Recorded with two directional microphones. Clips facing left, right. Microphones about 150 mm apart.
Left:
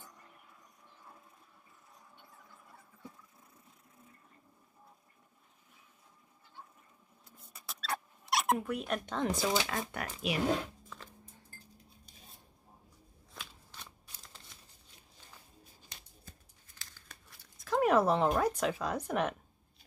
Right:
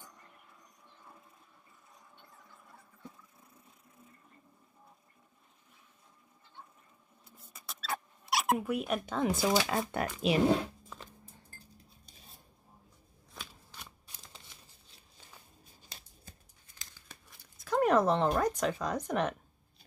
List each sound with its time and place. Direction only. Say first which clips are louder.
0.0 s train: even; 5° left (ahead or behind)
2.1 s squeal: even; 5° left (ahead or behind)
7.3 s a sound: even; centre (ahead or behind)
9.7 s speech: right 5 dB; 20° right (ahead or behind)
13.3 s shuffling cards: right 1 dB; 5° right (ahead or behind)
16.7 s tearing: right 1 dB; 15° right (ahead or behind)
17.6 s speech: right 1 dB; centre (ahead or behind)